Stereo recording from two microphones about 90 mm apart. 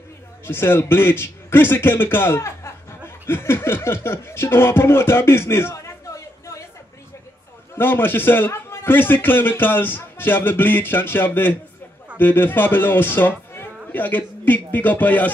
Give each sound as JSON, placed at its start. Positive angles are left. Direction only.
{"t": 0.5, "sound": "a man's voice", "side_deg": 25}
{"t": 7.7, "sound": "a man's voice", "side_deg": 25}